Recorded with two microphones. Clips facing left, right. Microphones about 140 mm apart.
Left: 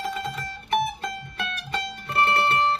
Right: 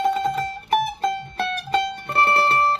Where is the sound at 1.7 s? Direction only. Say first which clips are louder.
Right 8 dB; 30° right (ahead or behind).